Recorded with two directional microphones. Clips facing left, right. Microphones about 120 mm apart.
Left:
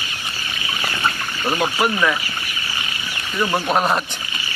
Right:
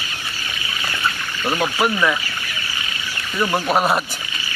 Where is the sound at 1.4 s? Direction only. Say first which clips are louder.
Even; 15° left (ahead or behind).